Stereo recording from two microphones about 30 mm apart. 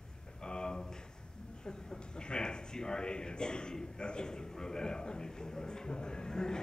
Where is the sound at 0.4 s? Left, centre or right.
Left.